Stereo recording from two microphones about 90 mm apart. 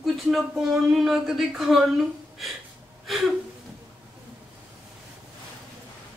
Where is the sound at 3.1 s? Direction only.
Centre (ahead or behind).